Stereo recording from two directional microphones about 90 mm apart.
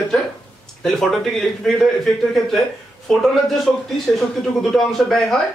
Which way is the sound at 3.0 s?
Centre (ahead or behind).